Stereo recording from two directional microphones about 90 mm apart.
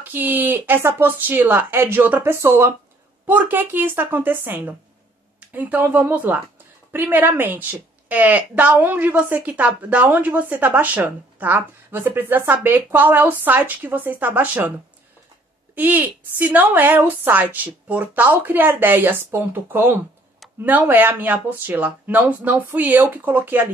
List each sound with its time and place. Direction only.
0.1 s a woman's voice: 20° right (ahead or behind)
15.7 s speech: 20° right (ahead or behind)